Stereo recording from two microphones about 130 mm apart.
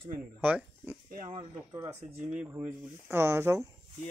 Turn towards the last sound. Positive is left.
turn(degrees=-20)  # may be behind; listen again after turning